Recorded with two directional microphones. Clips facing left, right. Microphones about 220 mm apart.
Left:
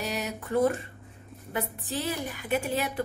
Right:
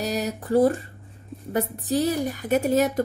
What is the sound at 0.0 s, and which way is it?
A woman's voice, 35° right (ahead or behind).